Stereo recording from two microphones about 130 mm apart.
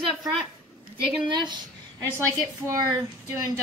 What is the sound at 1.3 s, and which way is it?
Speech, 35° right (ahead or behind).